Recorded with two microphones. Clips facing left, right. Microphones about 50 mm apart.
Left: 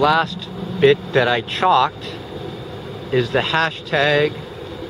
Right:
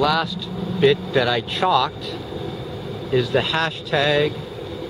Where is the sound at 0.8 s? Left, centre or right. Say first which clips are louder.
Left 3 dB; left.